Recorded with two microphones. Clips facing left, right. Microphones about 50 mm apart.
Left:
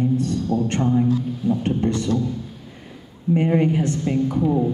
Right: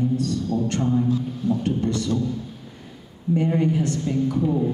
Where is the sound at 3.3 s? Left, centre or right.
Left.